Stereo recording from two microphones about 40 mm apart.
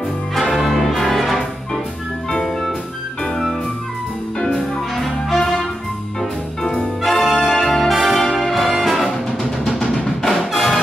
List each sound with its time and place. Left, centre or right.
0.5 s brass instrument: centre
3.3 s music: centre
4.9 s music: centre
6.6 s brass instrument: centre
7.0 s brass instrument: centre
7.9 s music: centre
9.1 s music: centre